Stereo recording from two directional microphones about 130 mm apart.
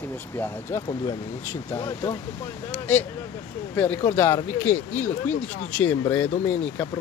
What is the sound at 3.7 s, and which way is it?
Speech, 15° left (ahead or behind).